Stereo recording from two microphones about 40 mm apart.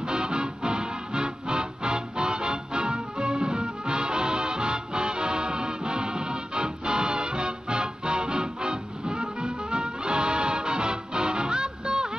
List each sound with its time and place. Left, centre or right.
0.0 s music: right